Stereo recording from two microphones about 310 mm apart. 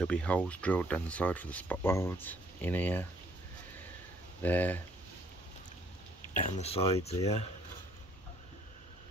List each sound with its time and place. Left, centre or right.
0.0 s speech: centre
4.4 s speech: centre
6.3 s speech: centre